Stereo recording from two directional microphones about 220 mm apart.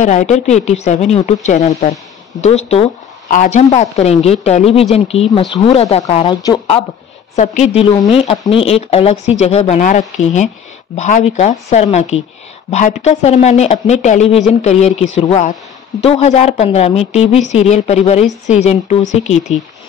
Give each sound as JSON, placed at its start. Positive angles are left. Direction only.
{"t": 0.0, "sound": "a woman's voice", "side_deg": 35}
{"t": 7.3, "sound": "a woman's voice", "side_deg": 30}